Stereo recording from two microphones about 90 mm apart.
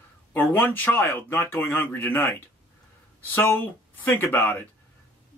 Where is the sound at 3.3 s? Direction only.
20° left (ahead or behind).